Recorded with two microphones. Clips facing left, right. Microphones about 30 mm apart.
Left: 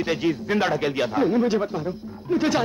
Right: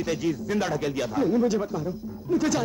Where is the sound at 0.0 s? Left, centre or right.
Left.